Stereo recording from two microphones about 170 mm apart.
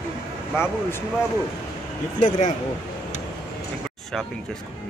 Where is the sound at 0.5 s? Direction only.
15° left (ahead or behind).